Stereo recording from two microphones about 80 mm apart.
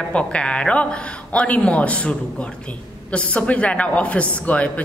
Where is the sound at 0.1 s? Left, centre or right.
Centre.